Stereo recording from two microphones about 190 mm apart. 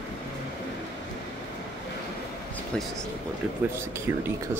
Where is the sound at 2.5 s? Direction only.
5° left (ahead or behind).